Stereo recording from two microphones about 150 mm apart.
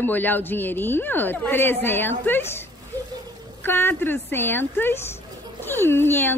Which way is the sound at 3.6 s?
15° left (ahead or behind).